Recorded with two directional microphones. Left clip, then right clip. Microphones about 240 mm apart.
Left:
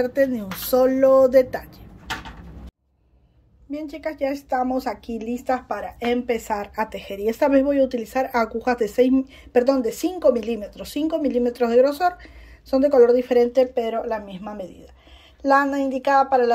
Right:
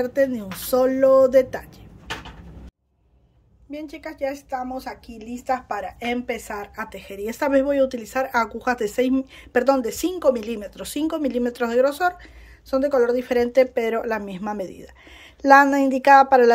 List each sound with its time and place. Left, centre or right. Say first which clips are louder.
0.0 s a woman's voice: left 1 dB; centre
3.7 s a woman's voice: left 4 dB; centre